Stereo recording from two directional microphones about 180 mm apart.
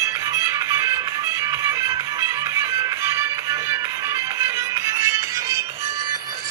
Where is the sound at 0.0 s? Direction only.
15° right (ahead or behind).